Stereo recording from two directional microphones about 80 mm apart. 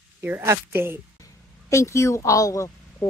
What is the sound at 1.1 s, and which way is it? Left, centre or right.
A woman's voice, left.